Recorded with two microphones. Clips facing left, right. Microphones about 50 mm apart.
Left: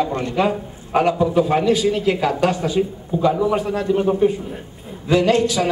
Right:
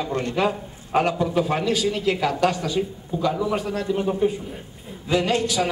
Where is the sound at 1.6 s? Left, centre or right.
Left.